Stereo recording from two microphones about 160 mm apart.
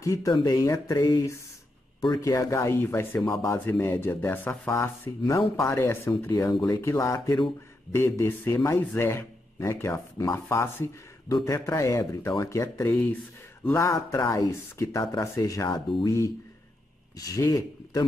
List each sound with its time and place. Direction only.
0.0 s a man's voice: 20° left (ahead or behind)